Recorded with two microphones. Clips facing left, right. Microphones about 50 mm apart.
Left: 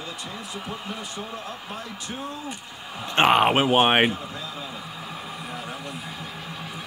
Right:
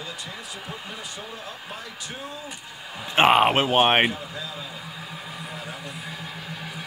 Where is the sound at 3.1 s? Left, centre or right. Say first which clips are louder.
Right 1 dB; centre.